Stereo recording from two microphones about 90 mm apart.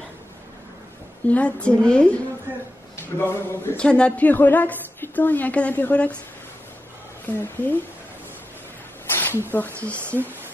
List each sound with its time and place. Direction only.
1.2 s speech: 15° left (ahead or behind)
3.0 s speech: 25° left (ahead or behind)
3.7 s a woman's voice: 10° left (ahead or behind)
7.2 s a woman's voice: 25° left (ahead or behind)
9.1 s a sound: 25° left (ahead or behind)
9.9 s speech: 25° right (ahead or behind)